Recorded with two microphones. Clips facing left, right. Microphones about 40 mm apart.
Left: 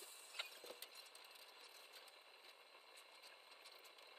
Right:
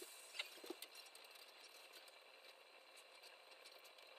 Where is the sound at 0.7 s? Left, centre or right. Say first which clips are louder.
Right 4 dB; left.